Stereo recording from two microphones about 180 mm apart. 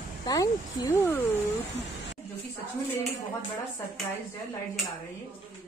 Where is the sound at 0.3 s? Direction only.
20° left (ahead or behind).